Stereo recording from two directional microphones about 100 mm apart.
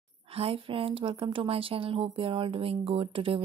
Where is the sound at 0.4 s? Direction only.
70° right (ahead or behind).